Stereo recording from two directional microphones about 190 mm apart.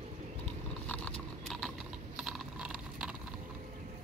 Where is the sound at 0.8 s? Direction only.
5° left (ahead or behind).